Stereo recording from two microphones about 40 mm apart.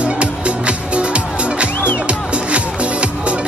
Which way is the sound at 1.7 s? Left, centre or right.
Left.